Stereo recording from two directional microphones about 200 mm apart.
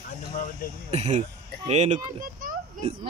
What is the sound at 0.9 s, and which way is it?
Speech, 35° right (ahead or behind).